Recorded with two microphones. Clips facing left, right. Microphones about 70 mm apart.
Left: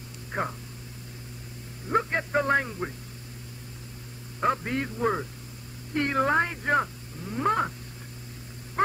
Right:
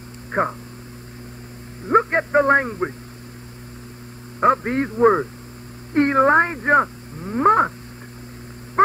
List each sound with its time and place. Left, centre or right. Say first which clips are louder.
0.3 s speech: right 9 dB; right
1.9 s speech: right 9 dB; right
4.4 s speech: right 9 dB; right
8.8 s a sound: right 9 dB; right